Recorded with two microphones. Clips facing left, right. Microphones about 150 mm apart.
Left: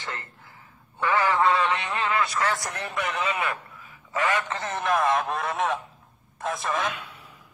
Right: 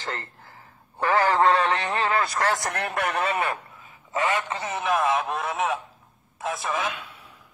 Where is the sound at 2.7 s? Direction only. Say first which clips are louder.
Right 3 dB; 65° right (ahead or behind).